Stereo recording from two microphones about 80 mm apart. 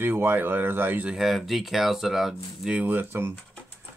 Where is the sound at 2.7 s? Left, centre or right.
Right.